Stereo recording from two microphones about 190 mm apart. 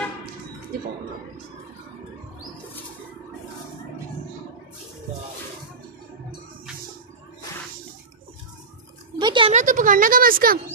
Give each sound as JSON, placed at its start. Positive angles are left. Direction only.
{"t": 9.2, "sound": "speech", "side_deg": -25}
{"t": 9.5, "sound": "speech", "side_deg": -40}